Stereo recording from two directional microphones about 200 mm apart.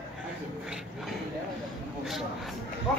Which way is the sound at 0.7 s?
Centre (ahead or behind).